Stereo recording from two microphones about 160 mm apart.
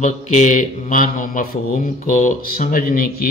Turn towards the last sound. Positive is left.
turn(degrees=65)  # may be behind; listen again after turning